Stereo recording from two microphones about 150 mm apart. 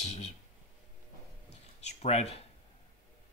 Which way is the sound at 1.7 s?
45° left (ahead or behind).